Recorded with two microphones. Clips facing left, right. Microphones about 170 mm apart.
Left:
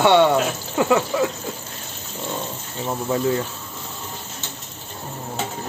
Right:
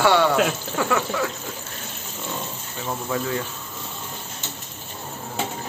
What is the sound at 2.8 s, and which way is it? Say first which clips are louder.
Speech: left 5 dB; 30° left (ahead or behind).